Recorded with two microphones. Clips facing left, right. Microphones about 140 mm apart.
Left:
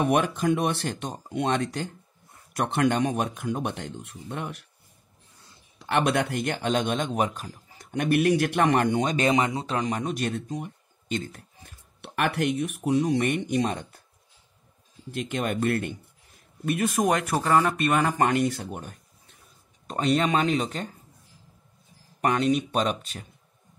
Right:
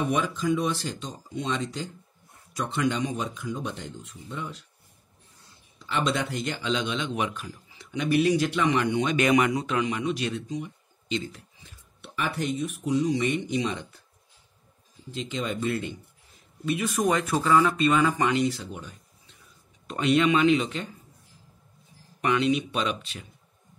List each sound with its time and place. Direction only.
0.0 s speech: 60° left (ahead or behind)
5.8 s a man's voice: 60° left (ahead or behind)
15.0 s a man's voice: 60° left (ahead or behind)
19.9 s speech: 40° left (ahead or behind)
22.2 s a man's voice: 45° left (ahead or behind)